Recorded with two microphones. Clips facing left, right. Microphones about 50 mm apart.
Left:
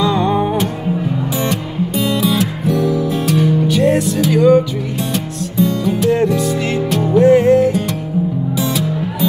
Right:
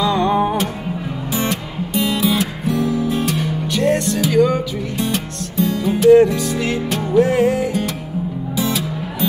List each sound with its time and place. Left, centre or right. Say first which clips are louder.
0.0 s music: left 1 dB; centre